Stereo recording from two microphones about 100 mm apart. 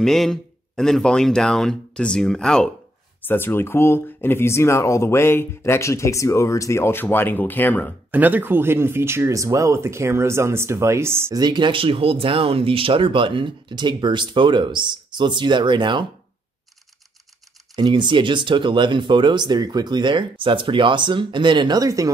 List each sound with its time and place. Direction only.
0.0 s speech: 5° left (ahead or behind)
3.2 s speech: 20° left (ahead or behind)
8.1 s speech: 15° right (ahead or behind)
11.3 s speech: 45° right (ahead or behind)
17.7 s speech: 50° right (ahead or behind); by 22.1 s 35° right (ahead or behind)